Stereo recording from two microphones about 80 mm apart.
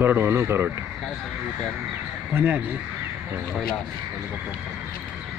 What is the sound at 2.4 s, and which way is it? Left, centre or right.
Speech, right.